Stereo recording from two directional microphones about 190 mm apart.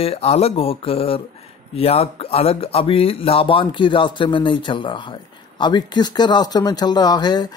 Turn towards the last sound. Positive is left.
turn(degrees=20)  # may be behind; listen again after turning